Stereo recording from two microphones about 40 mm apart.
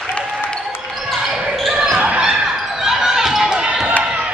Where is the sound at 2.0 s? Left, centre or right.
Right.